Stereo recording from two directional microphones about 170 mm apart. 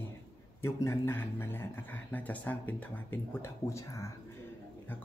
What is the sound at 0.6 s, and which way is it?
Speech, 15° left (ahead or behind).